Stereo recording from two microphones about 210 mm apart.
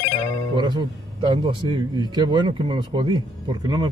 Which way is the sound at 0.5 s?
20° right (ahead or behind).